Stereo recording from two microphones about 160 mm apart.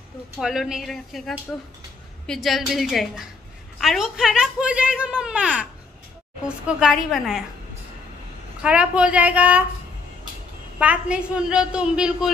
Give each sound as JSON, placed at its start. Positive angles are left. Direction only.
{"t": 0.4, "sound": "a woman's voice", "side_deg": 0}
{"t": 8.6, "sound": "a woman's voice", "side_deg": -5}
{"t": 10.8, "sound": "a woman's voice", "side_deg": -10}